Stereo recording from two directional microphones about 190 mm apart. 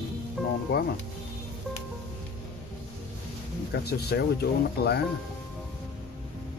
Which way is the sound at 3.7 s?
55° left (ahead or behind).